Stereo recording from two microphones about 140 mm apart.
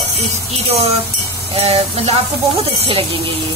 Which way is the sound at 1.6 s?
45° right (ahead or behind).